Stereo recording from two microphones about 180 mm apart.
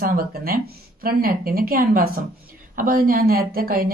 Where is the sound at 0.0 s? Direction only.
55° right (ahead or behind).